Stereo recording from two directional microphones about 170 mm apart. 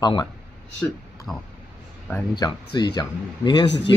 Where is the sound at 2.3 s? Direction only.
25° left (ahead or behind).